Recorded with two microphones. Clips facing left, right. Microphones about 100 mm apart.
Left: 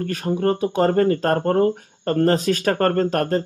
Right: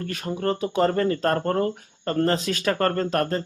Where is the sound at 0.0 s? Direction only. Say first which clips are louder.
Left 6 dB; 40° left (ahead or behind).